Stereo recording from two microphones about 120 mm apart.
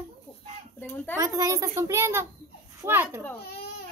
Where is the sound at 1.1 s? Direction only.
25° right (ahead or behind).